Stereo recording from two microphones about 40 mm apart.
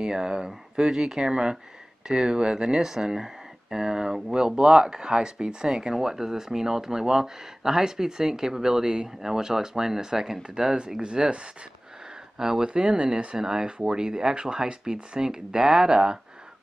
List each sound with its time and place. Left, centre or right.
0.0 s speech: centre